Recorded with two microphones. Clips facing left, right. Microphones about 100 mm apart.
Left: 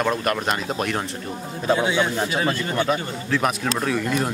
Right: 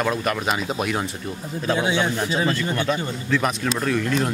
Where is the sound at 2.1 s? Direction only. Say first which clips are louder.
Even; 15° left (ahead or behind).